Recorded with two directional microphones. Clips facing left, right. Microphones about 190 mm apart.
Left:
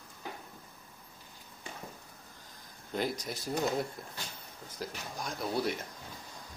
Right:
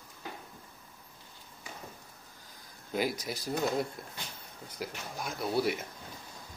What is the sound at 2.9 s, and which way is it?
Speech, 5° right (ahead or behind).